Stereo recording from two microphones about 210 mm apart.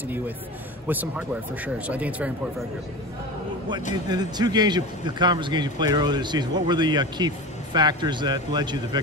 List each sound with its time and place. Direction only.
0.8 s speech: 10° right (ahead or behind)
4.1 s a man's voice: 20° right (ahead or behind)